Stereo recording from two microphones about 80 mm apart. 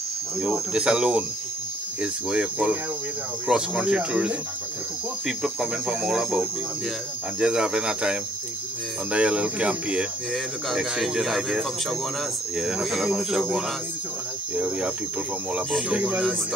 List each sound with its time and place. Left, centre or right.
0.7 s speech: centre
5.2 s speech: centre
10.3 s speech: centre
14.5 s speech: centre
15.9 s speech: centre